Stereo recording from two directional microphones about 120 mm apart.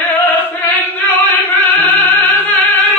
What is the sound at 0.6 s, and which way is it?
Music, 15° left (ahead or behind).